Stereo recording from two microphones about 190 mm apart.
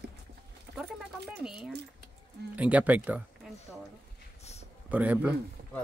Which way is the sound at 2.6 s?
5° right (ahead or behind).